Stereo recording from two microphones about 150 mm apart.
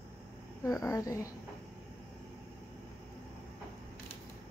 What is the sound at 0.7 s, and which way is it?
Speech, 20° left (ahead or behind).